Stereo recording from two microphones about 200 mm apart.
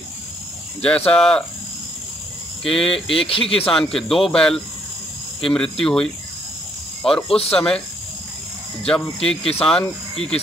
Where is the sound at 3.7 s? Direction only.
Centre (ahead or behind).